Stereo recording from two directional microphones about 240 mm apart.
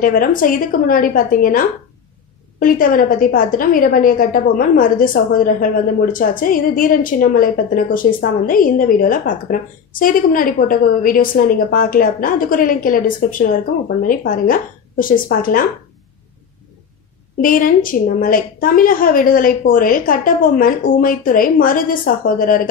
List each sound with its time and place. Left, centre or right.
0.0 s a woman's voice: left
17.4 s a woman's voice: left